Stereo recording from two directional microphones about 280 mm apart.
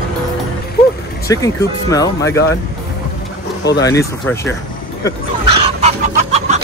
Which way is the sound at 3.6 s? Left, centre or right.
Centre.